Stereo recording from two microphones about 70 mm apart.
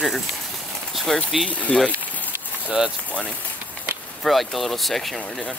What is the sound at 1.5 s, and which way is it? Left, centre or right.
Speech, left.